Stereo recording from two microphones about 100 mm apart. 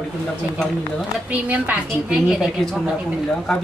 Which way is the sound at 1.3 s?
15° right (ahead or behind).